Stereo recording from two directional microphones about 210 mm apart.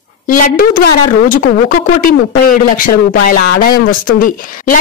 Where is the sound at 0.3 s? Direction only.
40° left (ahead or behind).